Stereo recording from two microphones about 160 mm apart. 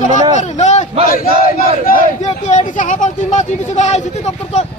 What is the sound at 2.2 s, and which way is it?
Speech, 45° left (ahead or behind).